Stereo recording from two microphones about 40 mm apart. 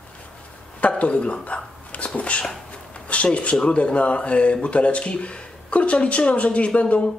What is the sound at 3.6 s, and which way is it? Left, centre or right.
Speech, left.